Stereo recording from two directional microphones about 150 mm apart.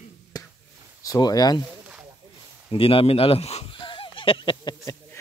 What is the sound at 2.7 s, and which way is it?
Speech, 40° left (ahead or behind).